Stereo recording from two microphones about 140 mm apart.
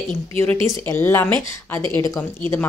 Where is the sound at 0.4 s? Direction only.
20° left (ahead or behind).